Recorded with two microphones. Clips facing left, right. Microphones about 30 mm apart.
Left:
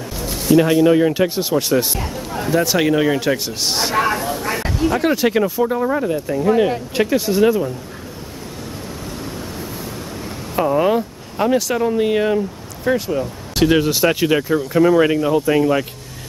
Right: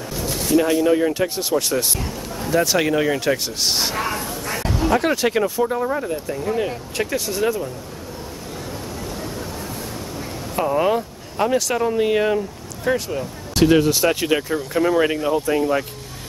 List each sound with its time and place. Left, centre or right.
0.2 s a sound: centre
0.6 s speech: centre
3.9 s a sound: centre
4.7 s speech: centre
10.5 s speech: centre
15.4 s speech: centre